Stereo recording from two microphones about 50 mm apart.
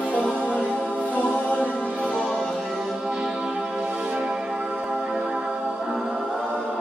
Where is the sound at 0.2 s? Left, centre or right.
Left.